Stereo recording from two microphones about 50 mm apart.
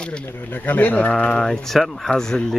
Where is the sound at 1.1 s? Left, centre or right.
Centre.